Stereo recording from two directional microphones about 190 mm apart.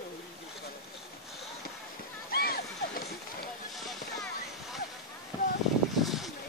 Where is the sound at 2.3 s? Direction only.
50° left (ahead or behind).